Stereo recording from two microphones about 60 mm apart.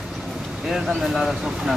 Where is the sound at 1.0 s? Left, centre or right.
Centre.